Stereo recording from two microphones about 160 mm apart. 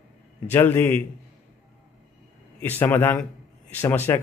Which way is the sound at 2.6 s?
10° left (ahead or behind).